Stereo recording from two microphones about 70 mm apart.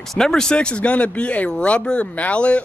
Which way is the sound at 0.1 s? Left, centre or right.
Centre.